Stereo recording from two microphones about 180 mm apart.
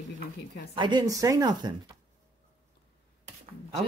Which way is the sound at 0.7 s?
25° right (ahead or behind).